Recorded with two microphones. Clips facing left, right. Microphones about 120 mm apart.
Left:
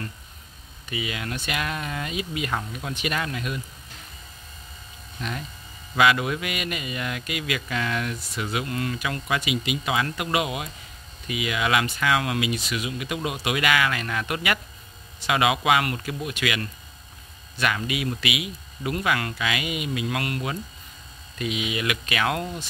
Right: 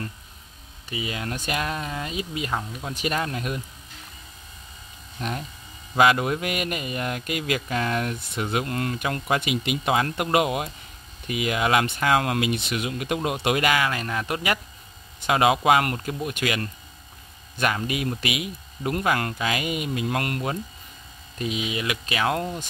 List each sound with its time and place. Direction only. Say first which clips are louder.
0.8 s speech: right 1 dB; 30° right (ahead or behind)
5.9 s speech: right 2 dB; 40° right (ahead or behind)
21.4 s speech: even; 35° right (ahead or behind)